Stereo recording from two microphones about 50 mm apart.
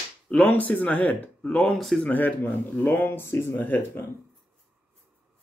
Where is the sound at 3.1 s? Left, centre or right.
Left.